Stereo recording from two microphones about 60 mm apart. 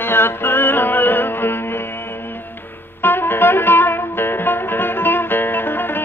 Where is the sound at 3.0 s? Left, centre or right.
Left.